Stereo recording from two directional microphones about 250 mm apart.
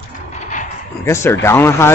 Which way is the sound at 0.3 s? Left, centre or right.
Left.